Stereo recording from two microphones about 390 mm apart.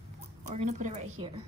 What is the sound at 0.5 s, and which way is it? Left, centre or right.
Speech, centre.